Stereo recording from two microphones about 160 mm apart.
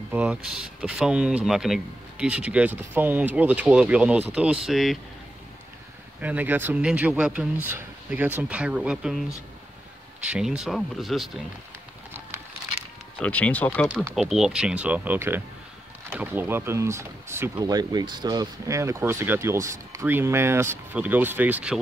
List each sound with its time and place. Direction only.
0.1 s speech: 10° right (ahead or behind)
6.2 s speech: 10° right (ahead or behind)
10.2 s speech: 5° right (ahead or behind)
13.2 s speech: 10° left (ahead or behind)
14.1 s speech: centre (ahead or behind)